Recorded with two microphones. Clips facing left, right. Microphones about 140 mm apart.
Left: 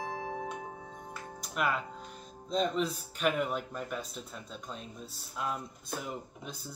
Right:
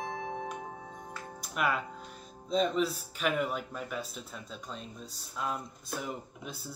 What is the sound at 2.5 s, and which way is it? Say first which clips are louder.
Speech: right 2 dB; 5° right (ahead or behind).